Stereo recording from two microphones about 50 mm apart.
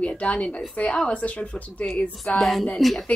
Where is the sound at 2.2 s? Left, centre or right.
Centre.